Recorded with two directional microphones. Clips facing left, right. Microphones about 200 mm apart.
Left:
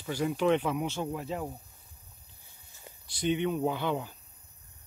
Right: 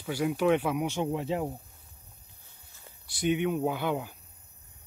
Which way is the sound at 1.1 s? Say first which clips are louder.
Right 5 dB; 25° right (ahead or behind).